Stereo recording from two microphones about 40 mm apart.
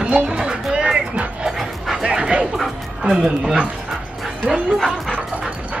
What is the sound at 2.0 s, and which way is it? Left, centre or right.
Bow-wow, right.